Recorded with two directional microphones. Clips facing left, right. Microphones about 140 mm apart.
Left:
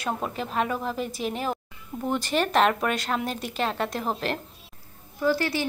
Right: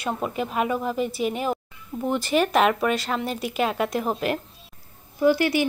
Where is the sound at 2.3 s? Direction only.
5° right (ahead or behind).